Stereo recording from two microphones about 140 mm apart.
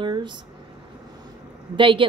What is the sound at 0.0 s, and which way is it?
Speech, 35° right (ahead or behind).